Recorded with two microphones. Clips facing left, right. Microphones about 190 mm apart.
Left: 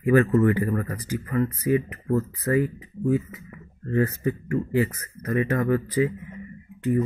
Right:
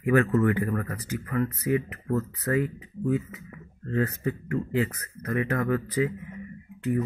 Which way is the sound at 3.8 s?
10° left (ahead or behind).